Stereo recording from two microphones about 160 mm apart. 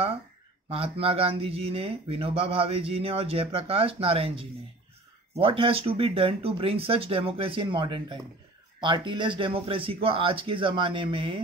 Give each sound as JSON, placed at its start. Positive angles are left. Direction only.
{"t": 0.7, "sound": "speech", "side_deg": -35}